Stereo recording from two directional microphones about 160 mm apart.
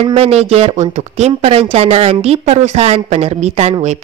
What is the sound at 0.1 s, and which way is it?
A woman's voice, 40° right (ahead or behind).